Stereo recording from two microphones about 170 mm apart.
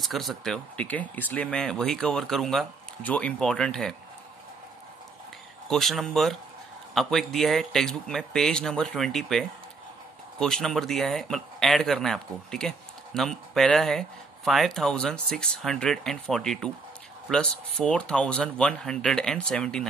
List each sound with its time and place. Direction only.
0.0 s speech: centre (ahead or behind)
5.7 s speech: centre (ahead or behind)